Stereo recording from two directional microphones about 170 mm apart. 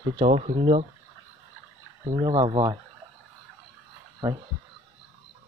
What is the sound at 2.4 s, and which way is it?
Speech, 30° right (ahead or behind).